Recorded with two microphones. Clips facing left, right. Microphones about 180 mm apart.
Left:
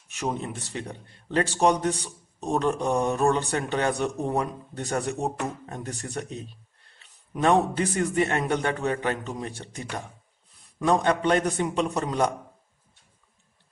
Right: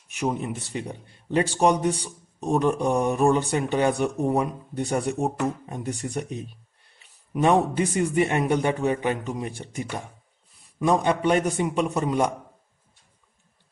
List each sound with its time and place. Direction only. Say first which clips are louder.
0.2 s a man's voice: right 3 dB; 10° right (ahead or behind)
7.3 s a man's voice: right 1 dB; 10° right (ahead or behind)